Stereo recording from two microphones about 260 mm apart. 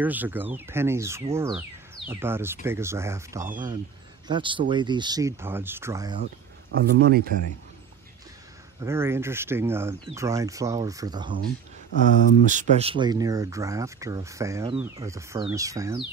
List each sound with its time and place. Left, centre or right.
0.0 s speech: centre
3.4 s speech: right
4.3 s speech: centre
6.7 s speech: right
8.8 s speech: centre
12.4 s speech: right; by 16.0 s centre